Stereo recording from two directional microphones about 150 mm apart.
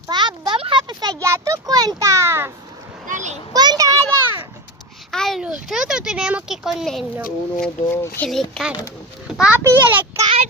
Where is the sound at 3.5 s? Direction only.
25° right (ahead or behind).